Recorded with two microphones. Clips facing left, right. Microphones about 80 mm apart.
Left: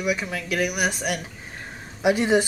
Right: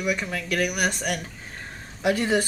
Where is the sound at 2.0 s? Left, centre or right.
Centre.